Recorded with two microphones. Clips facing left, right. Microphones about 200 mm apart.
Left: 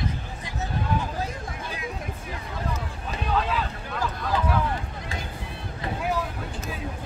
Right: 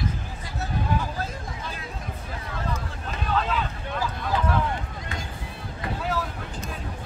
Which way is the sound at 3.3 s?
10° left (ahead or behind).